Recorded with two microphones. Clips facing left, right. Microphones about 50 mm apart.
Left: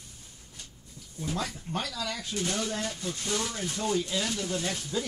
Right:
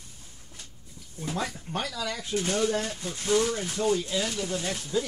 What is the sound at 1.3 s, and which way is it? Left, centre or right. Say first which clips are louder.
Speech: right 2 dB; right.